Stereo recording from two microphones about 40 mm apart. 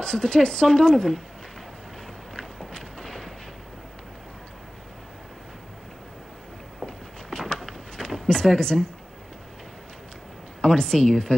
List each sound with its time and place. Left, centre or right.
0.0 s speech: centre
3.0 s artillery fire: centre
7.3 s a sound: centre
10.6 s speech: centre